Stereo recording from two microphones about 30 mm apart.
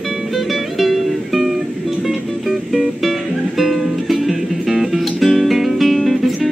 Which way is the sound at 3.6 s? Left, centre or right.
Centre.